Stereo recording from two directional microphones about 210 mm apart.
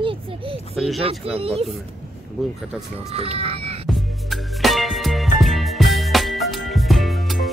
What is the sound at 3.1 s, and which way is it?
Speech, 30° right (ahead or behind).